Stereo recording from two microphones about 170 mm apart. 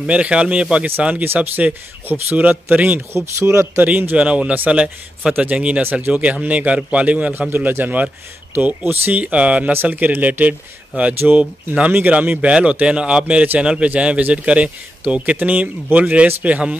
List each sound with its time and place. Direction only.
0.0 s speech: 5° right (ahead or behind)